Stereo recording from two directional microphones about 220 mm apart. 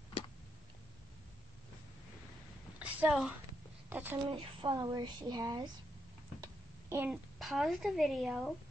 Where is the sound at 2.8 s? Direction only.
5° right (ahead or behind).